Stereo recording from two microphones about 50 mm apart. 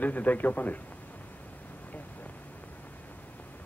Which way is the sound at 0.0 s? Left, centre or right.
Left.